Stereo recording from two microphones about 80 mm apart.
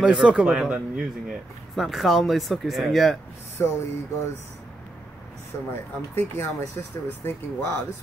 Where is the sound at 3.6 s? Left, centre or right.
Left.